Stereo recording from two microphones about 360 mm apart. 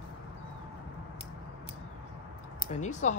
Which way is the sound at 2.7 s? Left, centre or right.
Centre.